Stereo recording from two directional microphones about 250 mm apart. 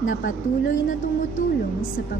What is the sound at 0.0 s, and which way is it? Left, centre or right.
A woman's voice, left.